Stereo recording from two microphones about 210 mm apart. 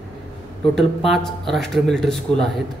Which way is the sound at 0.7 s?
Centre (ahead or behind).